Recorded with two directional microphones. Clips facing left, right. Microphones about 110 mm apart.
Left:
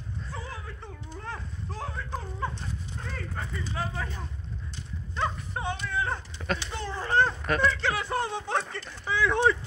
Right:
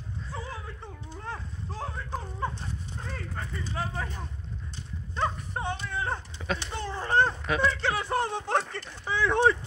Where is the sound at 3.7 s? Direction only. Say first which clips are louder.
Even; 30° right (ahead or behind).